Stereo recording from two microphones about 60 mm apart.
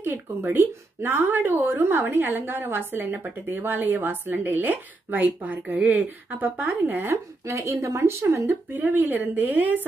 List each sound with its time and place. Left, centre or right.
0.0 s a woman's voice: right
7.4 s a woman's voice: right